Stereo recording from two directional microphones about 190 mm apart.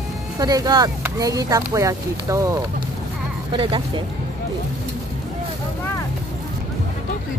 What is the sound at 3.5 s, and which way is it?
Speech, 25° right (ahead or behind).